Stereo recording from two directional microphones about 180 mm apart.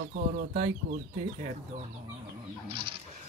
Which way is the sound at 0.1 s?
50° right (ahead or behind).